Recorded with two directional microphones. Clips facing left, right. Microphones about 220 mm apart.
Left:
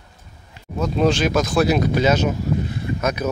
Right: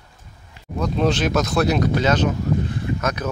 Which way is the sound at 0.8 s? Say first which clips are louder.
Left 2 dB; centre (ahead or behind).